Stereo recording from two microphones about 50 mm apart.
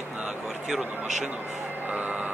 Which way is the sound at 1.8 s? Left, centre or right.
Right.